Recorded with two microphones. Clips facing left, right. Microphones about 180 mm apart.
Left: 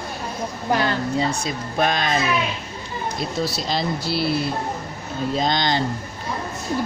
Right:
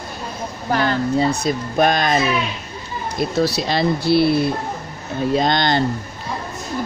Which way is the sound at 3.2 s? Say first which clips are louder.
Right 8 dB; 65° right (ahead or behind).